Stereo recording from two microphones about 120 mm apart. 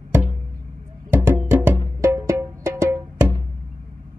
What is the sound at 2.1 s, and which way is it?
Music, 25° right (ahead or behind).